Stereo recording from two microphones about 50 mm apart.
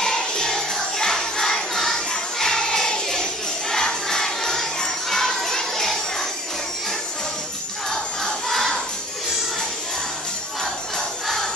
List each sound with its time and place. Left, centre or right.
0.0 s music: centre
3.7 s crowd: centre
8.5 s music: centre
10.6 s jingle bell: centre